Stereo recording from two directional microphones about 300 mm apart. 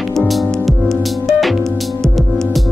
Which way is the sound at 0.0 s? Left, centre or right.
Centre.